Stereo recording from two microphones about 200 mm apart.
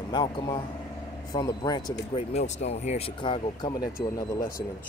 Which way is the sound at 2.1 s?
30° left (ahead or behind).